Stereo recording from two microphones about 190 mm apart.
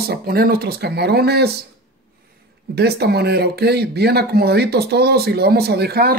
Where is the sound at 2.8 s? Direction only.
60° right (ahead or behind).